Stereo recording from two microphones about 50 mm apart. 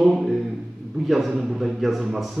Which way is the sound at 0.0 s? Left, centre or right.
Centre.